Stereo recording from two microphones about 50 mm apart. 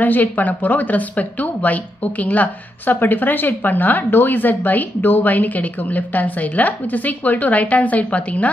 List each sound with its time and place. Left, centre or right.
0.0 s a woman's voice: left